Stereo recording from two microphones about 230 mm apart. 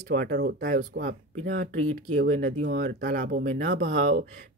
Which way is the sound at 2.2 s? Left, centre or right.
Right.